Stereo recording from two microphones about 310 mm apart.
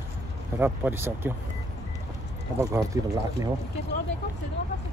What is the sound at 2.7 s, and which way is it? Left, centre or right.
Speech, centre.